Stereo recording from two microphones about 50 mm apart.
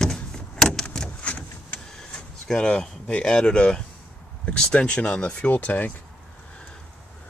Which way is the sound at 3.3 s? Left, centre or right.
Centre.